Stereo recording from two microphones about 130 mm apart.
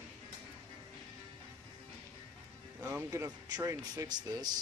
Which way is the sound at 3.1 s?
25° right (ahead or behind).